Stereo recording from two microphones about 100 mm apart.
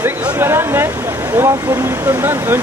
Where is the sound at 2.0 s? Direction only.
20° right (ahead or behind).